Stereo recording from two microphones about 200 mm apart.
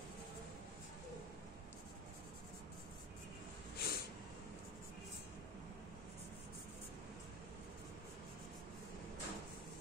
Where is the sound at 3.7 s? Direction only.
50° left (ahead or behind).